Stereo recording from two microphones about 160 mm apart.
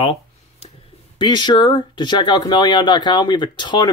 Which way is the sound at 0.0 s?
35° left (ahead or behind).